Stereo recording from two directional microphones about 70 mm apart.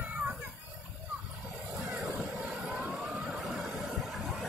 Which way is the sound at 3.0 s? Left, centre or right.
Centre.